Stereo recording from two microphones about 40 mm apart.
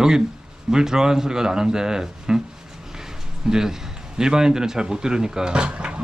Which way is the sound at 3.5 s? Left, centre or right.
Centre.